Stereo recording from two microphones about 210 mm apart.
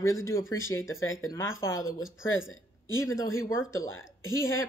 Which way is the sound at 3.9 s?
70° left (ahead or behind).